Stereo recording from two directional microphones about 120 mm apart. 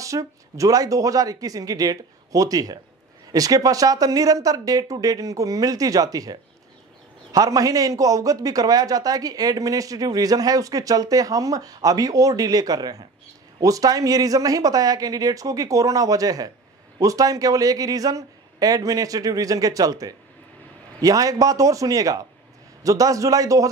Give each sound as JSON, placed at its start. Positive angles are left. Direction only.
{"t": 0.0, "sound": "a man's voice", "side_deg": -25}
{"t": 7.3, "sound": "a man's voice", "side_deg": -30}